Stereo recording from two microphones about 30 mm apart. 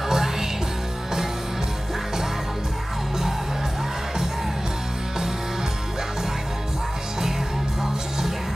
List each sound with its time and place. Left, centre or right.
0.1 s music: centre